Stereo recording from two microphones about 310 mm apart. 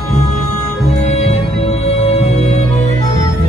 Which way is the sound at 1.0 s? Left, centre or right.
Left.